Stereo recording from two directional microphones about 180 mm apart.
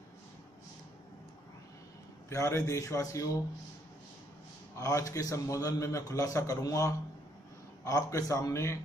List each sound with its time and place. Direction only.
2.2 s a man's voice: 15° left (ahead or behind)
4.7 s a man's voice: 15° left (ahead or behind)